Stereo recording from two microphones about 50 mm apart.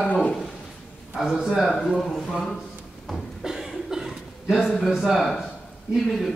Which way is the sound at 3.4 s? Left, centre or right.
Centre.